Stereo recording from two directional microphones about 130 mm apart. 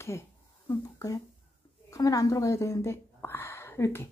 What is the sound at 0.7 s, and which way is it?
A woman's voice, 25° left (ahead or behind).